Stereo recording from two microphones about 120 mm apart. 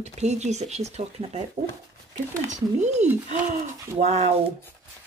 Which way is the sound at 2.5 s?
75° right (ahead or behind).